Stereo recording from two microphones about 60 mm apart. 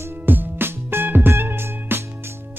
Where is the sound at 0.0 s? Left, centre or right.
Right.